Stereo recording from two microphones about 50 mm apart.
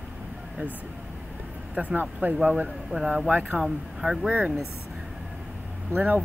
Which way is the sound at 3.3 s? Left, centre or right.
Right.